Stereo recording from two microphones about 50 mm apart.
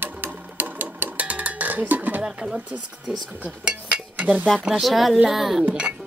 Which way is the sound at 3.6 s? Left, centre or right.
Right.